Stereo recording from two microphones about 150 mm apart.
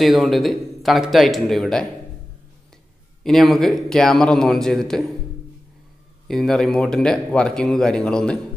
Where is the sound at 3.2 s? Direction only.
Centre (ahead or behind).